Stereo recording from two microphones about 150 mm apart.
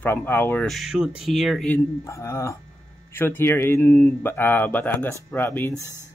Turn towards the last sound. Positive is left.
turn(degrees=-15)  # may be behind; listen again after turning